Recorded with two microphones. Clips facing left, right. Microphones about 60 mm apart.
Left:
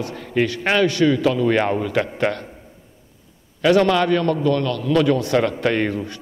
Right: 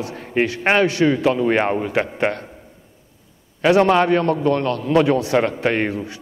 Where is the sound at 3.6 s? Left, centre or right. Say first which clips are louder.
Right 1 dB; right.